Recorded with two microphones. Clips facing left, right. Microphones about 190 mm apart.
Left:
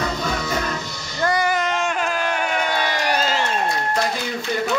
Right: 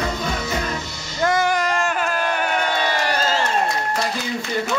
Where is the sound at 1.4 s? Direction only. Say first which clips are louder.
Right 1 dB; centre (ahead or behind).